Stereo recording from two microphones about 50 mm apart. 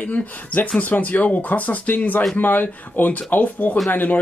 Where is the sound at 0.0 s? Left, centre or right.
Left.